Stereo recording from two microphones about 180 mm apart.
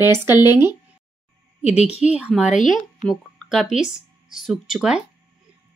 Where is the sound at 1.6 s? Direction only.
35° left (ahead or behind).